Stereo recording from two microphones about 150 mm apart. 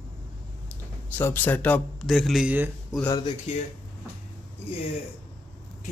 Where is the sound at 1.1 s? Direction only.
15° left (ahead or behind).